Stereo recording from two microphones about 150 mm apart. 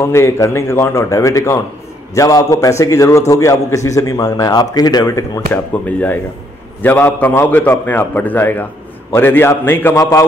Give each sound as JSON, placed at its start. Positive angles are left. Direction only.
{"t": 0.0, "sound": "a man's voice", "side_deg": 15}
{"t": 5.5, "sound": "a man's voice", "side_deg": 10}